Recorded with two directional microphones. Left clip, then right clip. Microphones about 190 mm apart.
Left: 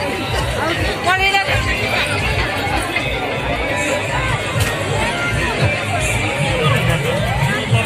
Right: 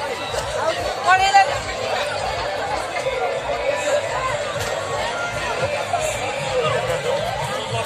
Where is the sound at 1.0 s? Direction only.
40° right (ahead or behind).